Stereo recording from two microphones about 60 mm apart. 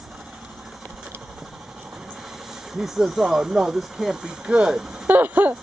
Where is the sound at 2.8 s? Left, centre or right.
Centre.